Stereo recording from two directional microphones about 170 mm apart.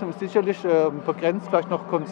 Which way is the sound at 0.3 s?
15° left (ahead or behind).